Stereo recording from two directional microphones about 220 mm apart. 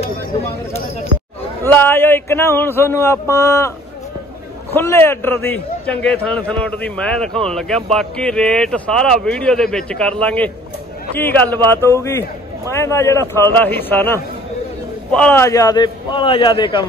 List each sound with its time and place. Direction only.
1.6 s a man's voice: 10° left (ahead or behind)
4.7 s a man's voice: 10° left (ahead or behind)